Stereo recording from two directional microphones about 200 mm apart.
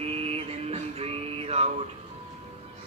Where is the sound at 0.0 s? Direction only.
30° right (ahead or behind).